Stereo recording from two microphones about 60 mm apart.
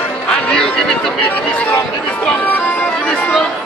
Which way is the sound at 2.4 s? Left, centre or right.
Left.